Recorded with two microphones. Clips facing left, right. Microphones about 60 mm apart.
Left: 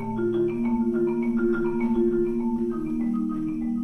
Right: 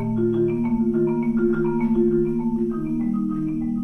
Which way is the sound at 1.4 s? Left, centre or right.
Centre.